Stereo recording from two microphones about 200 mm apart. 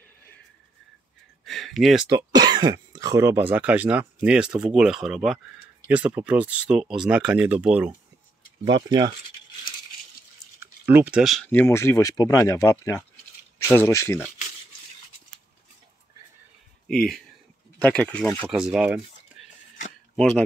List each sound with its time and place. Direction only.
1.4 s a sound: centre (ahead or behind)
2.1 s speech: 20° right (ahead or behind)
8.6 s speech: 20° right (ahead or behind)
10.6 s speech: 10° right (ahead or behind); by 14.3 s 10° left (ahead or behind)
16.8 s speech: 5° left (ahead or behind)
18.5 s speech: 5° right (ahead or behind)